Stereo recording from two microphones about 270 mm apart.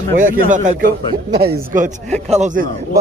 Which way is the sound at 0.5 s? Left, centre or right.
Right.